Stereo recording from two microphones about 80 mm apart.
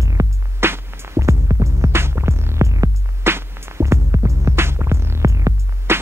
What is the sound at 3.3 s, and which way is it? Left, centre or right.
Music, right.